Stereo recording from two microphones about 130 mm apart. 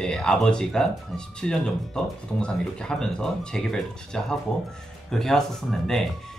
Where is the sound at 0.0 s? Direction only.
5° left (ahead or behind).